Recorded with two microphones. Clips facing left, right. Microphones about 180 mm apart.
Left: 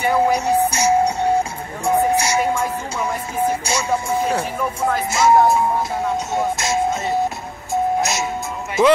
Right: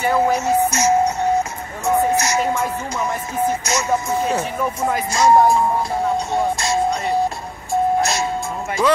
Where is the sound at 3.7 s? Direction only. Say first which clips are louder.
Right 1 dB; 10° left (ahead or behind).